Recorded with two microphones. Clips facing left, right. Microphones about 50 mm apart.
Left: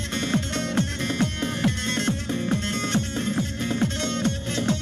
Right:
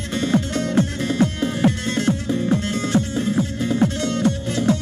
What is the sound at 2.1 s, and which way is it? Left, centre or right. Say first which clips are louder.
Music: right 6 dB; right.